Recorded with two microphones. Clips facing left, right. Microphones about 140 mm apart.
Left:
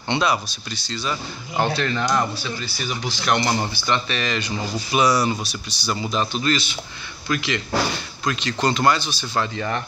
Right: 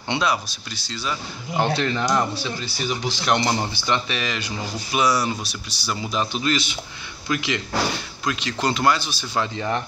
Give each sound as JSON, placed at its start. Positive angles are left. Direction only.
{"t": 0.1, "sound": "speech", "side_deg": 0}
{"t": 1.6, "sound": "speech", "side_deg": -20}